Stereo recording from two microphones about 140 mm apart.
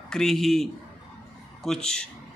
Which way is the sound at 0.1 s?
Centre (ahead or behind).